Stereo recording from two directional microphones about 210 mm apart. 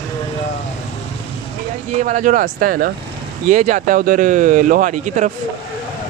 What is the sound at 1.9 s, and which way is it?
Speech, 35° right (ahead or behind).